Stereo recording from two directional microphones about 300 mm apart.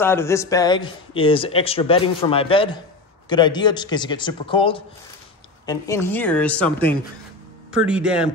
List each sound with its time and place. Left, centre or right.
0.0 s a woman's voice: centre